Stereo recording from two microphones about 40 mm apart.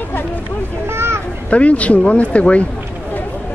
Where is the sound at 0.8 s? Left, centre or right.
Right.